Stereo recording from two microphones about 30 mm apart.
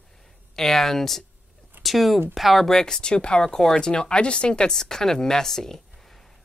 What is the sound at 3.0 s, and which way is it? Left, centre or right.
Speech, left.